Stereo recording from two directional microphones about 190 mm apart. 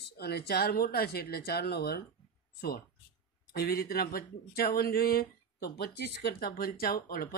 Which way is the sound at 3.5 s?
55° left (ahead or behind).